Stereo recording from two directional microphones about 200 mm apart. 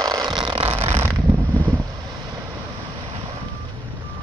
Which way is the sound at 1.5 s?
15° right (ahead or behind).